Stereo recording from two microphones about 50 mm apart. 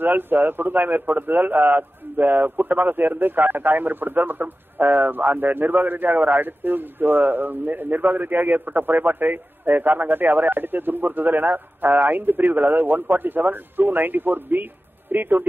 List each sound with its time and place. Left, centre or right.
0.0 s a man's voice: right